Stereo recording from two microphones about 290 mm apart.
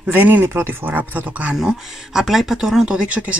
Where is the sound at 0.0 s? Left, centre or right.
Centre.